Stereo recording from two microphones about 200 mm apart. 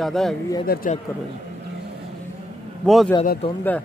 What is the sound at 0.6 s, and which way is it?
Speech, 45° left (ahead or behind).